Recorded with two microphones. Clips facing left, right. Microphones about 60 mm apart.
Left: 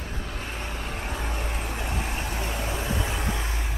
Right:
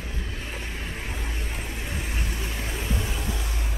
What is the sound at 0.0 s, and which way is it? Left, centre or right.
Vehicle, left.